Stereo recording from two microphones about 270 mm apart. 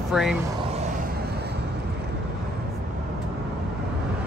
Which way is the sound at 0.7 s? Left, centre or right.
Right.